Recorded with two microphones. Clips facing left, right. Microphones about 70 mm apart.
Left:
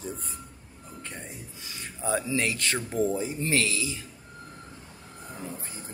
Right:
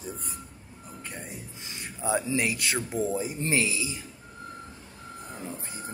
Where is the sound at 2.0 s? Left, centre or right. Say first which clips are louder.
Right 1 dB; centre.